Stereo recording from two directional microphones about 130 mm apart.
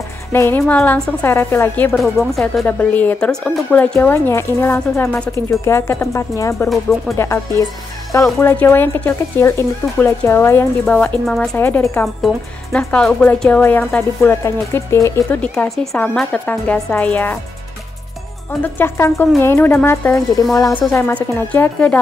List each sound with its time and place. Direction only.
0.3 s speech: 15° left (ahead or behind)
1.9 s speech: centre (ahead or behind)
2.6 s speech: 10° left (ahead or behind)
6.7 s speech: centre (ahead or behind)
7.2 s speech: 20° left (ahead or behind); by 11.5 s 5° left (ahead or behind)
11.5 s speech: 15° left (ahead or behind)
12.7 s speech: 10° left (ahead or behind)
15.4 s speech: 10° left (ahead or behind)
18.6 s speech: 20° left (ahead or behind)